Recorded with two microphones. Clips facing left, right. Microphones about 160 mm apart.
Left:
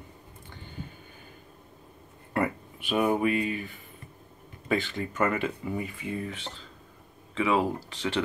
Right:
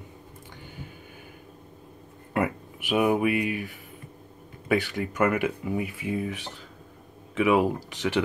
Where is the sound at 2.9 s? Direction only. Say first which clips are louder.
Right 2 dB; 10° right (ahead or behind).